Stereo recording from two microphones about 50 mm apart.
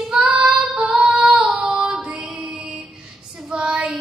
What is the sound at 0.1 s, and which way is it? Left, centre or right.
Child singing, centre.